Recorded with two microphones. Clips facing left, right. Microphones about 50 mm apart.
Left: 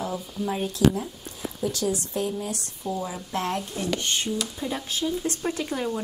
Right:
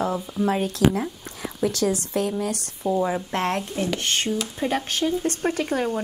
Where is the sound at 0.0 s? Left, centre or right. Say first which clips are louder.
Right 6 dB; right.